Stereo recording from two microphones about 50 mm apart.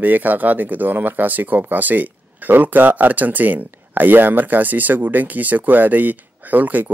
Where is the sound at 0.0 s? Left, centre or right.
Right.